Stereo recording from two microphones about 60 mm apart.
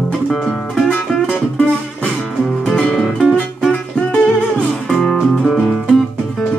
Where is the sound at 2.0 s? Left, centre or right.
Centre.